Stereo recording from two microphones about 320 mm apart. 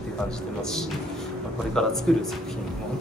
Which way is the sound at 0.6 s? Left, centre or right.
Centre.